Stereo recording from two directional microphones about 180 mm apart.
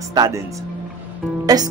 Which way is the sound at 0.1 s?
20° right (ahead or behind).